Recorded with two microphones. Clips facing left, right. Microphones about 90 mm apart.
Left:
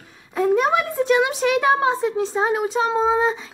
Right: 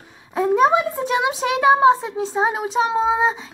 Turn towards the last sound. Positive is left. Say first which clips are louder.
# even
turn(degrees=-15)  # may be behind; listen again after turning